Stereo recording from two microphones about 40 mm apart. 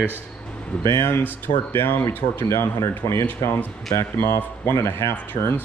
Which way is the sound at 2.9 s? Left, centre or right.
Left.